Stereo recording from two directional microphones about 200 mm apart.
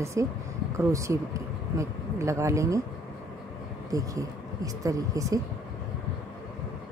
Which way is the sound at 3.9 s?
15° right (ahead or behind).